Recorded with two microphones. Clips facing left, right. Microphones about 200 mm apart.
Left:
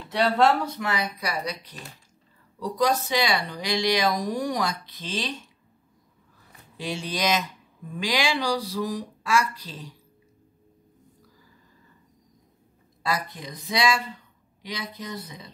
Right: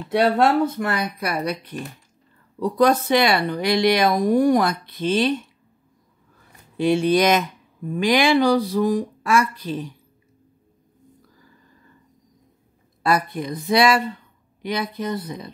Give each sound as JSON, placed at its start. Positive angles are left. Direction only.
{"t": 0.1, "sound": "speech", "side_deg": -55}
{"t": 6.8, "sound": "speech", "side_deg": -60}
{"t": 13.0, "sound": "speech", "side_deg": -55}